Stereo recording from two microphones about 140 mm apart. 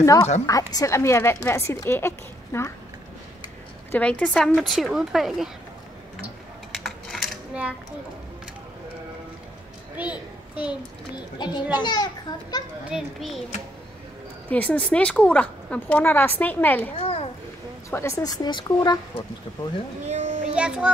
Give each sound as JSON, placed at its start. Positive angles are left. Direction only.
{"t": 0.0, "sound": "a woman's voice", "side_deg": 25}
{"t": 3.9, "sound": "a woman's voice", "side_deg": 10}
{"t": 6.7, "sound": "a sound", "side_deg": 0}
{"t": 9.9, "sound": "a sound", "side_deg": -10}
{"t": 11.3, "sound": "a child's voice", "side_deg": 30}
{"t": 12.9, "sound": "speech", "side_deg": 0}
{"t": 14.5, "sound": "a woman's voice", "side_deg": 10}
{"t": 16.9, "sound": "a child's voice", "side_deg": 45}
{"t": 17.8, "sound": "a woman's voice", "side_deg": 20}
{"t": 20.1, "sound": "a sound", "side_deg": -55}
{"t": 20.5, "sound": "a child's voice", "side_deg": -5}